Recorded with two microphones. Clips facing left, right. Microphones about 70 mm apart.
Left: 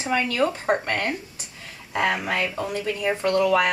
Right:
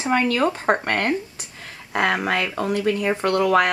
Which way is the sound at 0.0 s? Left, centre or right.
Right.